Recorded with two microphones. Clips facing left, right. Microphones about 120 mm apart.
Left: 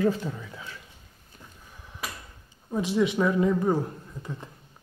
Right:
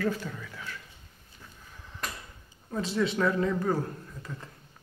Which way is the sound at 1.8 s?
5° left (ahead or behind).